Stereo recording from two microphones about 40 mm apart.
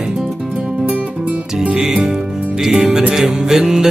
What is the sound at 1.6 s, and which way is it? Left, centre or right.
Music, right.